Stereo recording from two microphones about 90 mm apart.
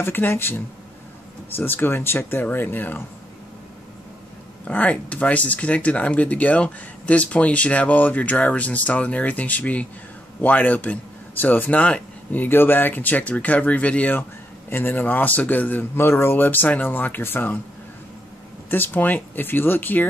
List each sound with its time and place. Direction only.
0.0 s speech: 25° left (ahead or behind)
4.6 s speech: 15° left (ahead or behind)
18.7 s speech: 20° left (ahead or behind)